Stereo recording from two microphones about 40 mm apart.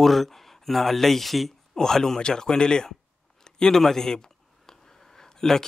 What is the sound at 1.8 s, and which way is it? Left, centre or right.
Speech, centre.